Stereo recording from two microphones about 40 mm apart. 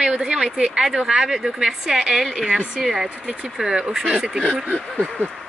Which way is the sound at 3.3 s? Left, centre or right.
Right.